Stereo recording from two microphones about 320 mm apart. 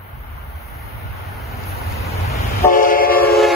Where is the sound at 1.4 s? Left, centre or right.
Centre.